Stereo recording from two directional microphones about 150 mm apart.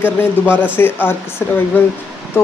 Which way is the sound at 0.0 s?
15° left (ahead or behind).